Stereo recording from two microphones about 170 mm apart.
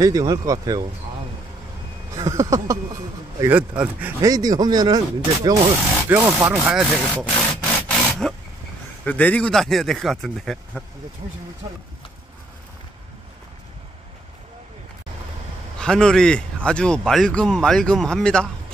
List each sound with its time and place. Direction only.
0.0 s speech: 25° right (ahead or behind)
2.1 s speech: 20° right (ahead or behind)
4.3 s speech: 20° right (ahead or behind)
6.0 s speech: 10° right (ahead or behind)
7.3 s rub: 5° left (ahead or behind)
9.0 s speech: 10° left (ahead or behind)
15.8 s speech: 5° left (ahead or behind)